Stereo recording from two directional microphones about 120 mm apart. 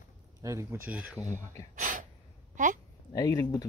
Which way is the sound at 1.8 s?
90° right.